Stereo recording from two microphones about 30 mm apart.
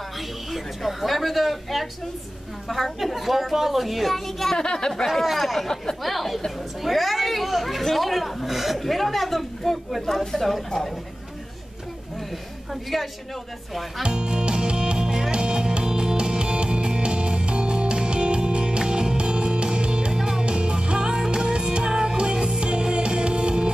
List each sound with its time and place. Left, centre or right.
0.5 s a woman's voice: centre
4.5 s a woman's voice: left
5.0 s a woman's voice: centre
12.9 s a woman's voice: centre
14.0 s music: right
20.1 s music: centre
20.4 s music: right